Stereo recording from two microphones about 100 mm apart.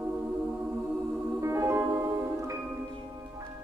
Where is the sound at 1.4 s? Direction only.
30° right (ahead or behind).